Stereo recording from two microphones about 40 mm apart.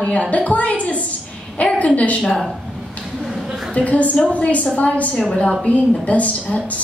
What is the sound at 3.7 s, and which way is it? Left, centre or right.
A woman's voice, left.